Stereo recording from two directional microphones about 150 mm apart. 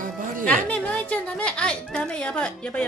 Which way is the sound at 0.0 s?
60° right (ahead or behind).